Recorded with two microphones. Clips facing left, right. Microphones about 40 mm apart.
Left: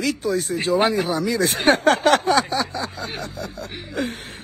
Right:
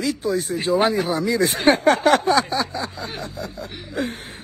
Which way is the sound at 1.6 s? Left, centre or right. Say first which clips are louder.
Even; left.